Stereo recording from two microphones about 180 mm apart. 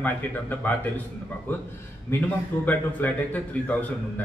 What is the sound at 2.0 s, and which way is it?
A man's voice, 10° left (ahead or behind).